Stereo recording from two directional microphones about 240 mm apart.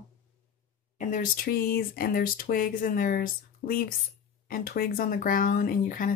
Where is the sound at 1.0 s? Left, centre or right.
Left.